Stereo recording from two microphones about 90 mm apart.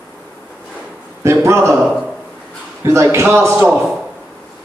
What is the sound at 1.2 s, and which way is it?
Speech, 30° right (ahead or behind).